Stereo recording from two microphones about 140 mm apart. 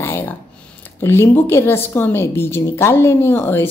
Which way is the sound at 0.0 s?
15° left (ahead or behind).